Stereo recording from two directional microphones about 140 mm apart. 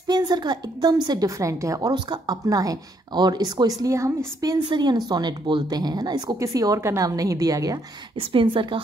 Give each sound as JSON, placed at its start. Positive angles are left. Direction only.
{"t": 0.0, "sound": "a woman's voice", "side_deg": -30}
{"t": 8.2, "sound": "a woman's voice", "side_deg": -35}